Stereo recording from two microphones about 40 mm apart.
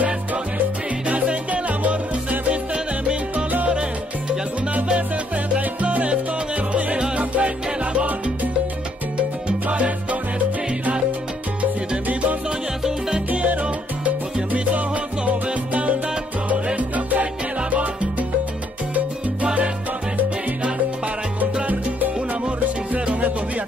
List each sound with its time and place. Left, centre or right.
1.0 s salsa music: right
2.5 s music: right
4.8 s salsa music: right
9.1 s salsa music: right
12.1 s music: right
13.3 s salsa music: right
16.7 s music: right
19.4 s salsa music: right
22.9 s music: right